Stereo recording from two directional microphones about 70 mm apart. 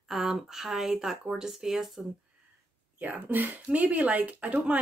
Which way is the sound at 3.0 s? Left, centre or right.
Right.